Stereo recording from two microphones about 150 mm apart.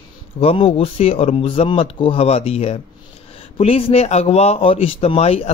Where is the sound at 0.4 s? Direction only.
40° left (ahead or behind).